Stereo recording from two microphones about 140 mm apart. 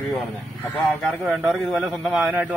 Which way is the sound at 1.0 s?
Centre (ahead or behind).